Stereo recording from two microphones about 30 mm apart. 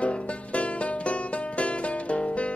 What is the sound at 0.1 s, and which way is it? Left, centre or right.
Music, left.